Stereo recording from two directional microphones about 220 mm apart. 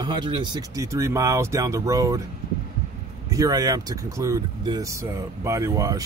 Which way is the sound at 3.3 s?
15° right (ahead or behind).